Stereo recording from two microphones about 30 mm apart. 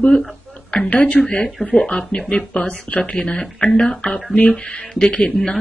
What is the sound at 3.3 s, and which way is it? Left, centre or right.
Speech, left.